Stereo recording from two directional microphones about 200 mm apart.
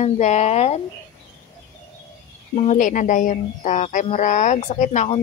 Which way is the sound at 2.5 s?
35° left (ahead or behind).